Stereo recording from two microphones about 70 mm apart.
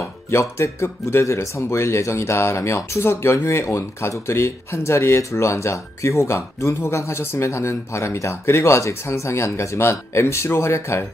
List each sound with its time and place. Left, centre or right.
0.3 s speech: left